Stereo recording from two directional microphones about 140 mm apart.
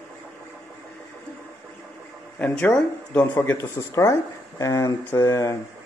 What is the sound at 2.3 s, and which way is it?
Speech, 10° left (ahead or behind).